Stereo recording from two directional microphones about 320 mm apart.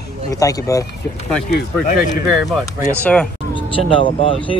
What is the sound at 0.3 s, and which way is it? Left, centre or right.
Speech, centre.